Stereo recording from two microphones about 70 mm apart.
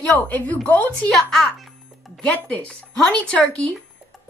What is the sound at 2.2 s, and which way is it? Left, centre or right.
A woman's voice, centre.